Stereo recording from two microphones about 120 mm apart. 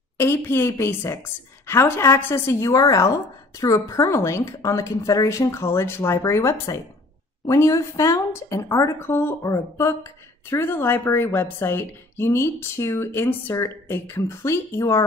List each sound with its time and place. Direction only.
0.2 s speech: 20° left (ahead or behind)